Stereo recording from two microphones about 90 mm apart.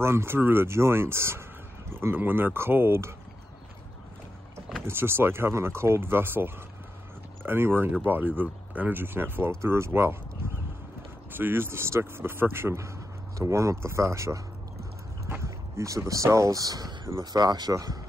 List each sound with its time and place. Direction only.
0.0 s speech: 25° right (ahead or behind)
4.8 s speech: 25° right (ahead or behind)
11.3 s speech: 25° right (ahead or behind); by 17.9 s 45° right (ahead or behind)